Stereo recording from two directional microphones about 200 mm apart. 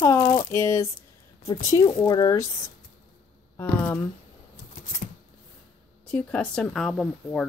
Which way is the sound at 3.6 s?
10° left (ahead or behind).